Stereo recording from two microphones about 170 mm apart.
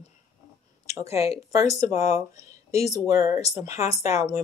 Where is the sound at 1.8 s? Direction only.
20° right (ahead or behind).